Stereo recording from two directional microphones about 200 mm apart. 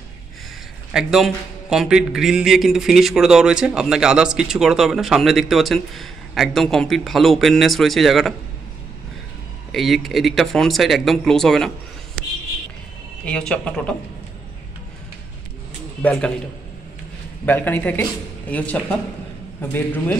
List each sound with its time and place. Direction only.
0.9 s a man's voice: centre (ahead or behind)
9.7 s a man's voice: centre (ahead or behind)
13.2 s a man's voice: 5° left (ahead or behind)
16.0 s a man's voice: 5° left (ahead or behind)
17.5 s speech: 10° left (ahead or behind)